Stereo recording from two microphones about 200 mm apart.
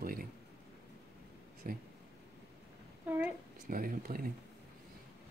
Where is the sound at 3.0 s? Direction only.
10° right (ahead or behind).